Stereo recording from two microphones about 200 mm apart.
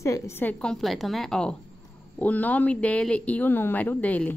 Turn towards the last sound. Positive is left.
turn(degrees=5)  # may be behind; listen again after turning